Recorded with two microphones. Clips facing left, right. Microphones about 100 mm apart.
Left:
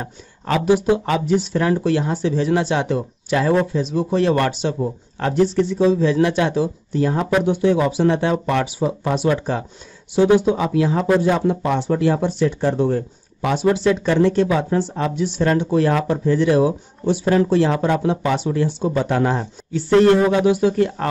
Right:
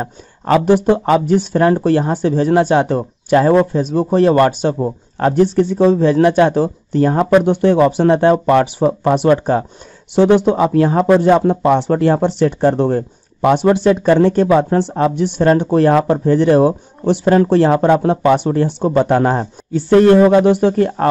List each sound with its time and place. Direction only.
0.7 s speech: 55° right (ahead or behind)
0.9 s speech: 40° right (ahead or behind)
1.2 s speech: 55° right (ahead or behind)
1.6 s speech: 40° right (ahead or behind)
5.4 s speech: 55° right (ahead or behind)
10.3 s speech: 60° right (ahead or behind)
10.6 s speech: 50° right (ahead or behind)
15.1 s speech: 55° right (ahead or behind)